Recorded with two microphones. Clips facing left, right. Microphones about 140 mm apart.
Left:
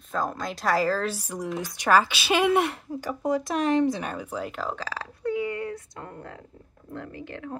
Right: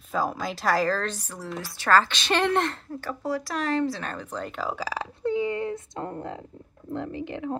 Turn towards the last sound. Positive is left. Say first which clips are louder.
# right 6 dB
turn(degrees=-20)  # may be behind; listen again after turning